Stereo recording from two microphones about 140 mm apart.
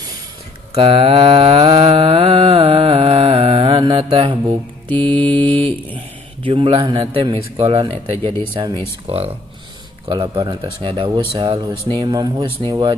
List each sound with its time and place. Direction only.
0.7 s mantra: 40° right (ahead or behind)
4.9 s speech: 35° right (ahead or behind)
5.5 s mantra: 40° right (ahead or behind)
7.2 s speech: 40° right (ahead or behind)